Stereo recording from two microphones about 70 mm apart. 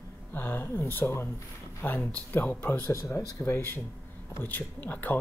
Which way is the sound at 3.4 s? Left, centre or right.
Left.